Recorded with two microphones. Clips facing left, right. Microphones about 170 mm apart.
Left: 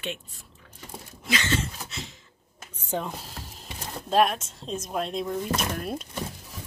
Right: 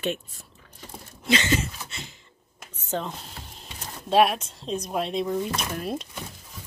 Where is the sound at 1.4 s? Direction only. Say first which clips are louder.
Right 3 dB; 10° right (ahead or behind).